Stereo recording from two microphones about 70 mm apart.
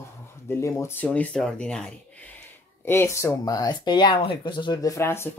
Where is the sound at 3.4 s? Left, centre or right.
Left.